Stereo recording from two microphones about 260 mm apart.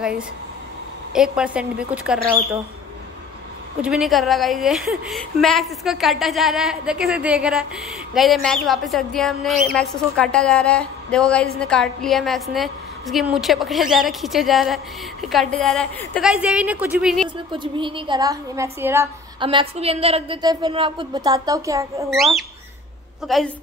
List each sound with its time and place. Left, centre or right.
1.1 s a woman's voice: centre
3.8 s a woman's voice: centre
17.5 s a woman's voice: centre
19.4 s a woman's voice: right
22.1 s a woman's voice: centre